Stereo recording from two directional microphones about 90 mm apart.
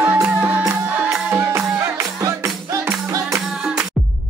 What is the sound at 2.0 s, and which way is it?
Music, 40° right (ahead or behind).